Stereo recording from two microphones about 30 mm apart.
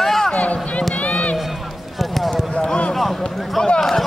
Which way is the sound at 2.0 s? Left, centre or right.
Centre.